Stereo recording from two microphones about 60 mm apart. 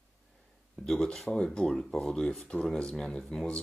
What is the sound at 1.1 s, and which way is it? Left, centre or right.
Speech, centre.